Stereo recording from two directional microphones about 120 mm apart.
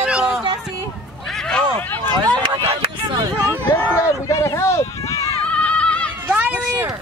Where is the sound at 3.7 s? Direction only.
20° left (ahead or behind).